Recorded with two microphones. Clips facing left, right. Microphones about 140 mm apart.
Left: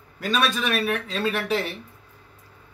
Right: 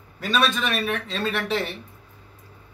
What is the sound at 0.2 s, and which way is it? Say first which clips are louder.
Speech: right 1 dB; 5° left (ahead or behind).